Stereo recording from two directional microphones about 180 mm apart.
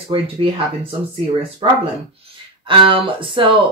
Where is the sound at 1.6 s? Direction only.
25° right (ahead or behind).